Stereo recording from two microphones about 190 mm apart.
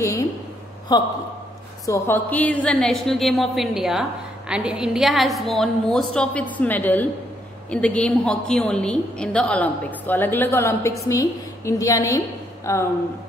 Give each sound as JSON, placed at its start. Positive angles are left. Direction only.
{"t": 0.9, "sound": "a man's voice", "side_deg": 20}